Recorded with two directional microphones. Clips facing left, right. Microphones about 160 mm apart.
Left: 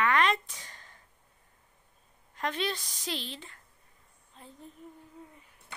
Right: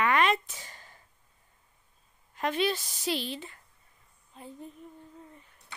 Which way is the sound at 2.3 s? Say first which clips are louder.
Right 4 dB; 10° right (ahead or behind).